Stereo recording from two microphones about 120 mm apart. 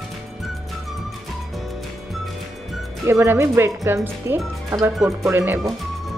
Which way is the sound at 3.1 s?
20° right (ahead or behind).